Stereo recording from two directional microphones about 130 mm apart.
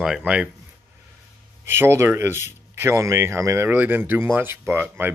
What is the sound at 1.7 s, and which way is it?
Speech, 20° right (ahead or behind).